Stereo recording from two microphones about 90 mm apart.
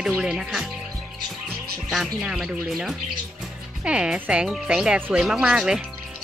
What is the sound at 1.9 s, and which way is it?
Speech, 5° right (ahead or behind).